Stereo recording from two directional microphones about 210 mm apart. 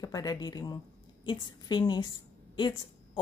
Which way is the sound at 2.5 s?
20° left (ahead or behind).